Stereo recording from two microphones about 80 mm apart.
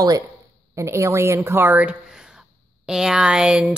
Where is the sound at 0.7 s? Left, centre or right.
Right.